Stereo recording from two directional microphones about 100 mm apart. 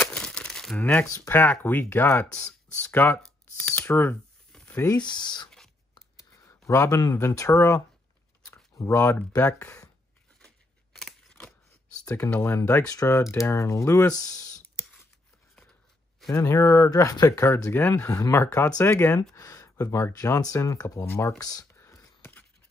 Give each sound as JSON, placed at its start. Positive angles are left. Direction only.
{"t": 0.0, "sound": "crumpling", "side_deg": 10}
{"t": 0.7, "sound": "speech", "side_deg": 15}
{"t": 4.9, "sound": "speech", "side_deg": 50}
{"t": 6.7, "sound": "speech", "side_deg": 30}
{"t": 11.0, "sound": "scissors", "side_deg": 5}
{"t": 12.0, "sound": "a sound", "side_deg": 35}
{"t": 12.3, "sound": "speech", "side_deg": 20}
{"t": 16.3, "sound": "speech", "side_deg": 30}
{"t": 17.6, "sound": "speech", "side_deg": 20}
{"t": 19.3, "sound": "speech", "side_deg": 35}
{"t": 21.0, "sound": "speech", "side_deg": 20}
{"t": 21.4, "sound": "speech", "side_deg": 40}
{"t": 21.7, "sound": "whispering", "side_deg": 30}